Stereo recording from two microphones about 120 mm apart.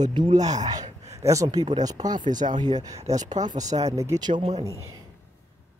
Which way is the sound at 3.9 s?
30° right (ahead or behind).